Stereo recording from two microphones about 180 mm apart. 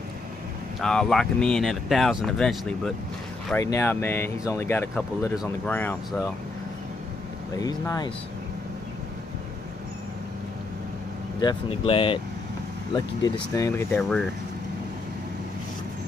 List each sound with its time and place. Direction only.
0.7 s speech: 5° left (ahead or behind)
3.5 s speech: 15° left (ahead or behind)
7.5 s speech: 20° left (ahead or behind)
11.3 s speech: 25° left (ahead or behind)
12.9 s speech: 20° left (ahead or behind)